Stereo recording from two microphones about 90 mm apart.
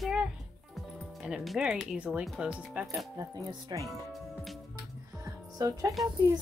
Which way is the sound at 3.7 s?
50° right (ahead or behind).